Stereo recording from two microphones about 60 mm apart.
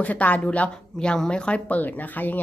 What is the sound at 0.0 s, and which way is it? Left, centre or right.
Speech, left.